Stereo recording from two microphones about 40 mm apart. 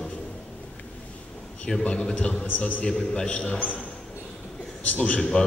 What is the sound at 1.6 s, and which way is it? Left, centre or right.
Speech, left.